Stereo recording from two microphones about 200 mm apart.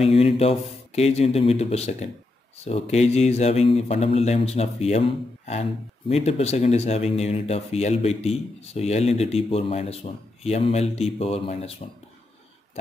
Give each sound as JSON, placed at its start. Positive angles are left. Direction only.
{"t": 0.0, "sound": "speech", "side_deg": 30}